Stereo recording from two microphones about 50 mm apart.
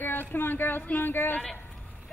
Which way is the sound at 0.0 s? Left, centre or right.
Left.